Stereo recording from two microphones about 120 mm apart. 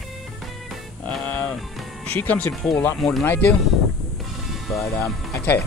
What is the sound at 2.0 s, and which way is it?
Speech, 15° left (ahead or behind).